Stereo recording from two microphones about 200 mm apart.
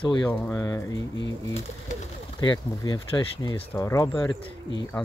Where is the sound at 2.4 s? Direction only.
20° left (ahead or behind).